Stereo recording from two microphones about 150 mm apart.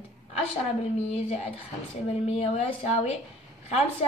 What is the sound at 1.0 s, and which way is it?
A woman's voice, 45° left (ahead or behind).